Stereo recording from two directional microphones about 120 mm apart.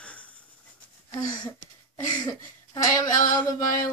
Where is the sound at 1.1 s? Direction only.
30° left (ahead or behind).